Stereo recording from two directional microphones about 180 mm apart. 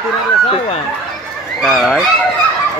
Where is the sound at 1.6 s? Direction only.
Centre (ahead or behind).